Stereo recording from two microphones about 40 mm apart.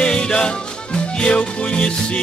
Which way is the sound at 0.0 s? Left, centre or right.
Left.